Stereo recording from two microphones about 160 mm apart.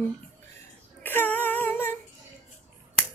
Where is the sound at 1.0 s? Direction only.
10° left (ahead or behind).